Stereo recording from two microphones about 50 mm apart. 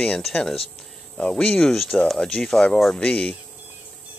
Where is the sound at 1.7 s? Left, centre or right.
Centre.